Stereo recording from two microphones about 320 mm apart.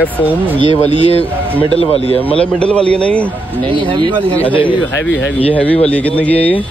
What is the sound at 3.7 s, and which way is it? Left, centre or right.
Speech, centre.